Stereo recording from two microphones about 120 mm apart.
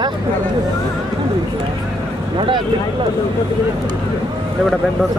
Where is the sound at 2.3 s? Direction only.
45° right (ahead or behind).